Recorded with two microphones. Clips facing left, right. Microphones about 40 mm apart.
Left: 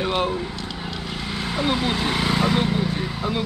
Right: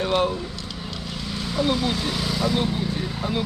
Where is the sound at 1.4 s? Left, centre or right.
Left.